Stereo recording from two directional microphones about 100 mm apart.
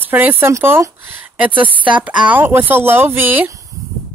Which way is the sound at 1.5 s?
60° right (ahead or behind).